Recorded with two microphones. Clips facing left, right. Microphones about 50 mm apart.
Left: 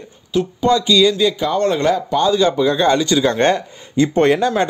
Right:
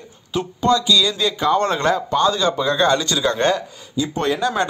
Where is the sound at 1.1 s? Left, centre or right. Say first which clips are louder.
Left 1 dB; centre.